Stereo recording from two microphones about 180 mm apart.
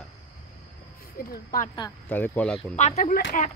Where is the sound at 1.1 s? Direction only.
55° left (ahead or behind).